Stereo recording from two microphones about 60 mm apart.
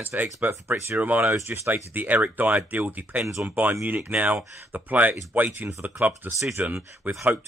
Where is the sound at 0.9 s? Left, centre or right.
Right.